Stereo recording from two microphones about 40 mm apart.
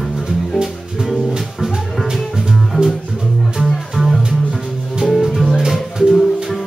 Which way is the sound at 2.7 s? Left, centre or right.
Right.